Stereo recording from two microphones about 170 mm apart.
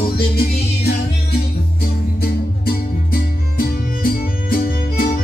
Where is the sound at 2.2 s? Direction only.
60° left (ahead or behind).